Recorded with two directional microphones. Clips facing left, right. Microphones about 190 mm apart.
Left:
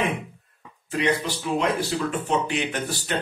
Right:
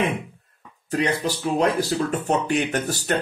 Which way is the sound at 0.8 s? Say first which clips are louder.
Right 1 dB; 40° right (ahead or behind).